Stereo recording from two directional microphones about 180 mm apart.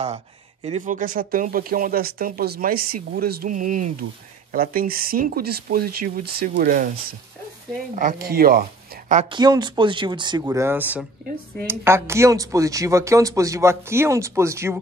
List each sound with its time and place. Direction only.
0.7 s speech: 40° right (ahead or behind); by 8.6 s 55° right (ahead or behind)
9.1 s speech: 30° right (ahead or behind); by 14.8 s 15° right (ahead or behind)